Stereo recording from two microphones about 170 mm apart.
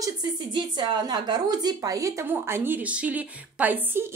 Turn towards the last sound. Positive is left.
turn(degrees=-10)  # may be behind; listen again after turning